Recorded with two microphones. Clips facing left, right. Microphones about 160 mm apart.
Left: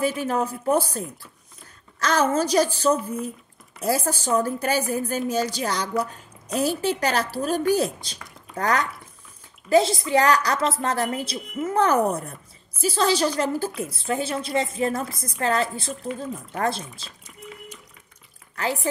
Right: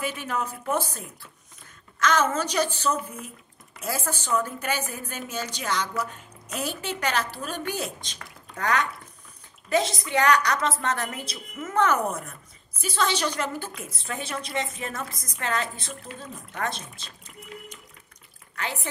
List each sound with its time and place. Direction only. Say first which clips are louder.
0.0 s a woman's voice: left 6 dB; 35° left (ahead or behind)
18.6 s a woman's voice: left 6 dB; 35° left (ahead or behind)